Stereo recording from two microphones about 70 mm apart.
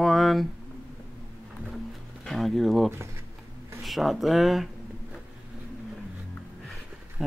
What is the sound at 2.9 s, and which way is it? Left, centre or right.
Speech, right.